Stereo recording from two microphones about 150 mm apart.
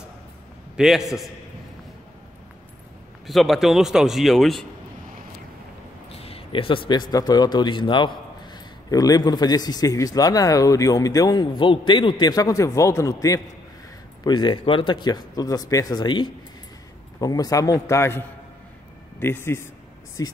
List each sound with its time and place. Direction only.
0.7 s speech: centre (ahead or behind)
3.3 s speech: centre (ahead or behind)
6.1 s a man's voice: 40° left (ahead or behind); by 20.3 s 25° left (ahead or behind)